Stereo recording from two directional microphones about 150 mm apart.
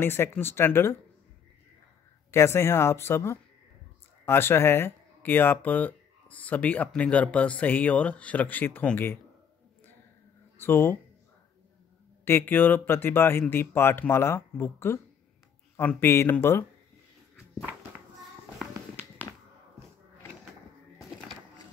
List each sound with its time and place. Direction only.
0.0 s speech: 15° left (ahead or behind)
2.3 s speech: 15° left (ahead or behind)
10.6 s speech: 15° left (ahead or behind)
12.3 s speech: 15° left (ahead or behind)